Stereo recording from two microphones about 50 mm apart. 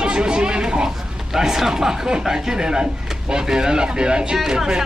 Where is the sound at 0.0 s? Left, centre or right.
Centre.